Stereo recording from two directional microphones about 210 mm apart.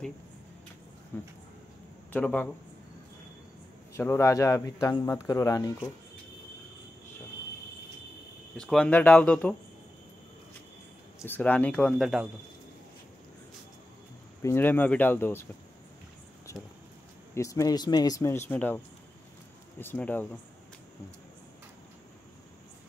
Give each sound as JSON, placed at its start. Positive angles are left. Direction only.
{"t": 1.1, "sound": "speech", "side_deg": 10}
{"t": 3.9, "sound": "speech", "side_deg": 10}
{"t": 8.5, "sound": "speech", "side_deg": 5}
{"t": 11.1, "sound": "speech", "side_deg": 10}
{"t": 14.4, "sound": "speech", "side_deg": 10}
{"t": 16.5, "sound": "a sound", "side_deg": 15}
{"t": 17.3, "sound": "speech", "side_deg": 15}
{"t": 19.8, "sound": "speech", "side_deg": 10}